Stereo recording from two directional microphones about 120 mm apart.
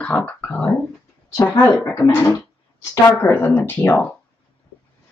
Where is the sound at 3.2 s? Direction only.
20° left (ahead or behind).